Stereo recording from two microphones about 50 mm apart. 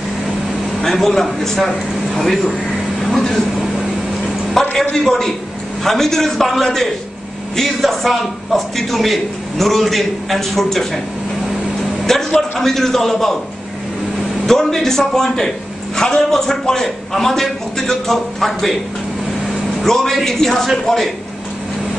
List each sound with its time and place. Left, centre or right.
0.7 s a man's voice: centre
4.6 s a woman's voice: centre
12.0 s a sound: centre
12.4 s a man's voice: centre
14.4 s a man's voice: centre
19.8 s a man's voice: centre